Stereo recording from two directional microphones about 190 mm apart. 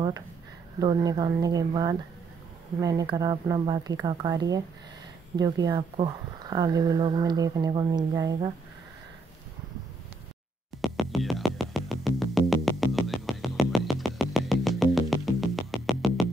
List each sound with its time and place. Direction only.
0.7 s speech: 20° right (ahead or behind)
11.0 s music: centre (ahead or behind)